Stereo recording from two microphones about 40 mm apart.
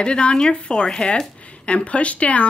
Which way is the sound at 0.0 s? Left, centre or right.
Left.